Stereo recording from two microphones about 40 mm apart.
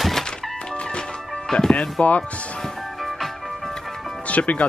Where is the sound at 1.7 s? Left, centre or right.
Left.